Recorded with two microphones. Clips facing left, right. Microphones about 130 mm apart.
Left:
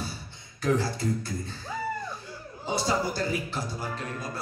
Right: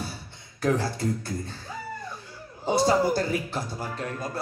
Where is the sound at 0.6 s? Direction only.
60° right (ahead or behind).